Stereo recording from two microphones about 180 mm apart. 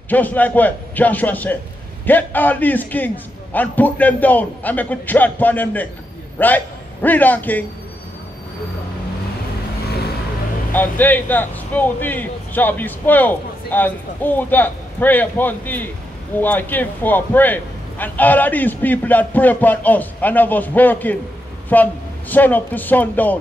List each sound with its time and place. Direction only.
0.1 s a man's voice: 10° left (ahead or behind)
9.8 s vehicle: 60° left (ahead or behind)
10.7 s a man's voice: 10° left (ahead or behind)